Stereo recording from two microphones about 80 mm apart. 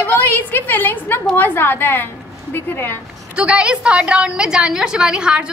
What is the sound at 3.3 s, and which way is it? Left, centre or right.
A woman's voice, centre.